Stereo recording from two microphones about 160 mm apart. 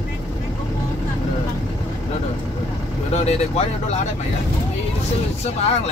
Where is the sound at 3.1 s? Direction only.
45° left (ahead or behind).